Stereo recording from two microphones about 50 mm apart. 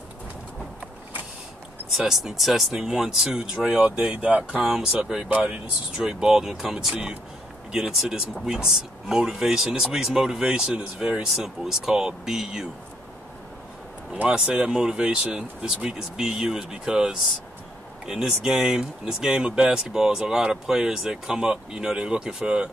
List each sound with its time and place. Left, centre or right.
1.9 s speech: centre
4.0 s speech: right
4.6 s speech: centre
5.3 s speech: right
14.3 s speech: centre